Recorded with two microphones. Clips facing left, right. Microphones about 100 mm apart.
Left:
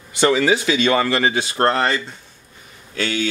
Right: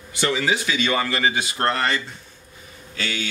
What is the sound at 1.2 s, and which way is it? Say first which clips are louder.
Speech: left 4 dB; 45° left (ahead or behind).